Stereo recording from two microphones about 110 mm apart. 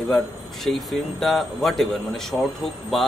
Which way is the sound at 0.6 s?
Centre (ahead or behind).